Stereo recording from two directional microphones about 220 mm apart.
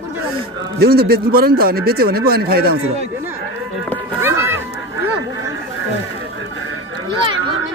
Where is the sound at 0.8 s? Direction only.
45° right (ahead or behind).